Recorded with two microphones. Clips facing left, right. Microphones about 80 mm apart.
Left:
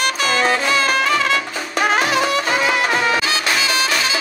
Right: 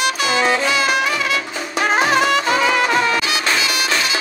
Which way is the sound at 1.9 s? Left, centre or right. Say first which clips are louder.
Right 3 dB; right.